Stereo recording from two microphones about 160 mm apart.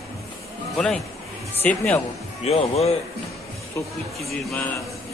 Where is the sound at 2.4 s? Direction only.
40° left (ahead or behind).